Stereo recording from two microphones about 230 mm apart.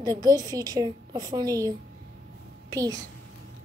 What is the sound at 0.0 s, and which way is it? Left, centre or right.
A woman's voice, centre.